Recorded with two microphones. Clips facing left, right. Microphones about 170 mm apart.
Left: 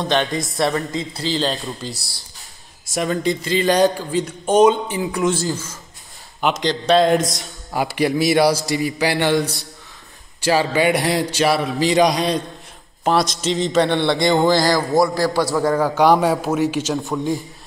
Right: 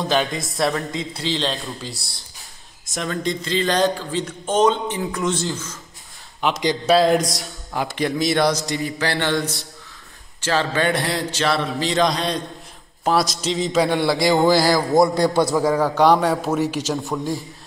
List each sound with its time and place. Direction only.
0.0 s a man's voice: centre (ahead or behind)
3.2 s a man's voice: 5° left (ahead or behind)
3.6 s a man's voice: 15° left (ahead or behind)
10.4 s a man's voice: 10° left (ahead or behind)
13.0 s a man's voice: centre (ahead or behind)
15.0 s a man's voice: 20° right (ahead or behind)
15.5 s a man's voice: centre (ahead or behind)